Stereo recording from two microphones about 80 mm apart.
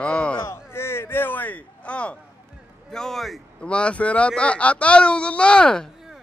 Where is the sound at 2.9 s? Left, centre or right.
Centre.